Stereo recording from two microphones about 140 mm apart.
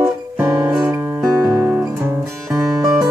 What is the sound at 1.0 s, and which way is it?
Guitar, 20° right (ahead or behind).